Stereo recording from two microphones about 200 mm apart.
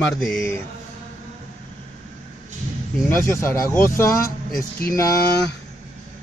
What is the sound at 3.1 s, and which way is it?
Speech, 10° left (ahead or behind).